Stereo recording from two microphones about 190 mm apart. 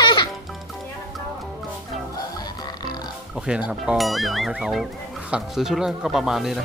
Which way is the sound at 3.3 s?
5° right (ahead or behind).